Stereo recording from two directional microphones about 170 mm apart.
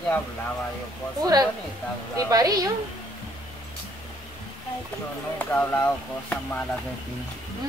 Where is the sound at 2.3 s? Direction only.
20° right (ahead or behind).